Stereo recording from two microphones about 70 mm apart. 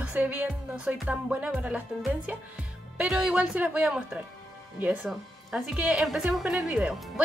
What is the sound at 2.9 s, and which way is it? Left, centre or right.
A woman's voice, centre.